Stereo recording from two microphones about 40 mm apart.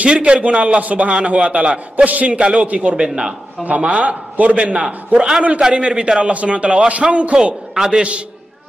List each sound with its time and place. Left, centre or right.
0.0 s a man's voice: right
4.8 s a man's voice: centre
7.7 s a man's voice: centre